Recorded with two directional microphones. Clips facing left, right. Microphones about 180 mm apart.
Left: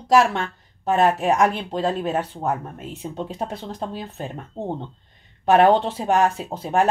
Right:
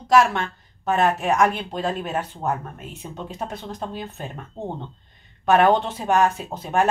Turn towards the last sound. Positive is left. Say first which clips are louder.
# left 1 dB
turn(degrees=30)  # may be behind; listen again after turning